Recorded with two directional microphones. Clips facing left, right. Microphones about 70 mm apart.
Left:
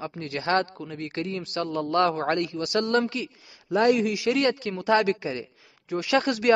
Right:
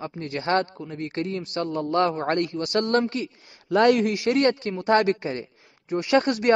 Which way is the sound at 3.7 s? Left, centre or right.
Right.